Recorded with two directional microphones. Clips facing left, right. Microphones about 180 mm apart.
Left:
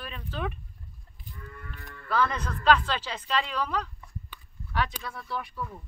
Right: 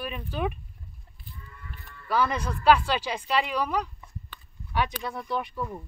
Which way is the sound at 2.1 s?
10° right (ahead or behind).